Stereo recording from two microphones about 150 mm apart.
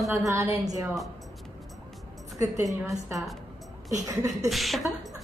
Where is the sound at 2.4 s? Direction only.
20° right (ahead or behind).